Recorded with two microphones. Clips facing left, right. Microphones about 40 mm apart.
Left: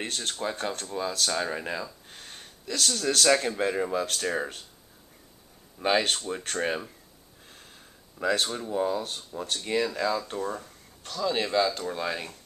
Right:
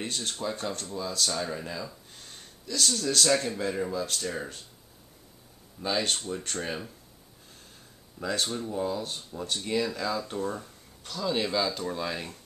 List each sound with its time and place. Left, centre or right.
0.0 s speech: left
2.0 s a sound: left
3.0 s speech: left
5.8 s speech: left
6.1 s speech: left
6.4 s speech: left
8.2 s speech: left
8.5 s speech: left; by 12.4 s centre